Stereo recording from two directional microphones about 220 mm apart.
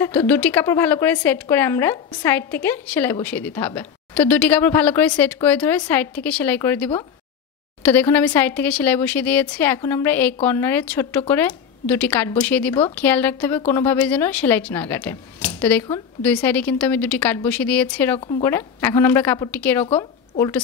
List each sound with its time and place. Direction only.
0.0 s a woman's voice: 10° left (ahead or behind)